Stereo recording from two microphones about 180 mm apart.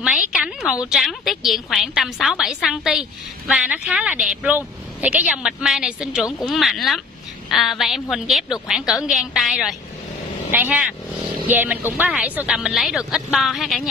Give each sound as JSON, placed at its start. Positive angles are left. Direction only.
{"t": 0.0, "sound": "a woman's voice", "side_deg": -5}